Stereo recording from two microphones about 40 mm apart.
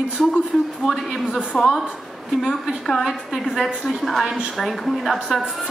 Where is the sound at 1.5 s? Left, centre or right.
Left.